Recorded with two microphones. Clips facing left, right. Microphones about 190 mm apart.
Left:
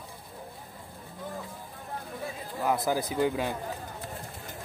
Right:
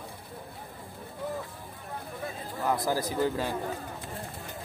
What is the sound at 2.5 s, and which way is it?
Speech, 20° left (ahead or behind).